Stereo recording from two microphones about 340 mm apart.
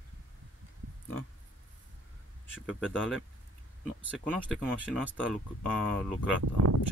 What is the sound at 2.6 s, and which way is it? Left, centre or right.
Speech, centre.